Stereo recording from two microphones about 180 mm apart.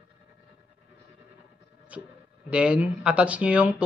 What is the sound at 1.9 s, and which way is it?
Speech, 5° right (ahead or behind).